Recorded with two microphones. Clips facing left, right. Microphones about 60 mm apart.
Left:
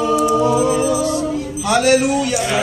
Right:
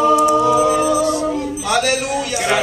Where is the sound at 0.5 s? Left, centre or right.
Right.